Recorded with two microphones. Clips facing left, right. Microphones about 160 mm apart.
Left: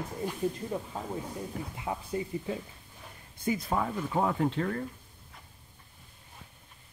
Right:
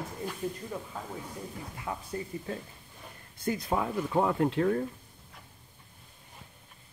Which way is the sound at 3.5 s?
Centre (ahead or behind).